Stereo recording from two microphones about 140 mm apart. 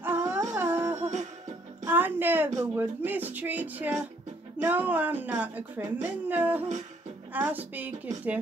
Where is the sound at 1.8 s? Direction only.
15° right (ahead or behind).